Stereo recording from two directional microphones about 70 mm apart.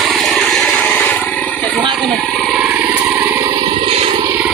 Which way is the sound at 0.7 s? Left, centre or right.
Left.